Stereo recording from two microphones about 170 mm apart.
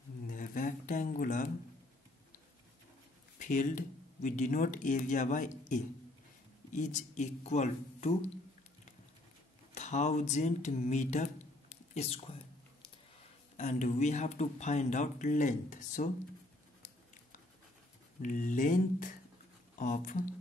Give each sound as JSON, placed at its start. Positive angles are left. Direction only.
{"t": 0.3, "sound": "a sound", "side_deg": 50}
{"t": 3.3, "sound": "speech", "side_deg": 50}
{"t": 6.7, "sound": "speech", "side_deg": 45}
{"t": 9.8, "sound": "speech", "side_deg": 40}
{"t": 13.6, "sound": "speech", "side_deg": 45}
{"t": 18.2, "sound": "speech", "side_deg": 50}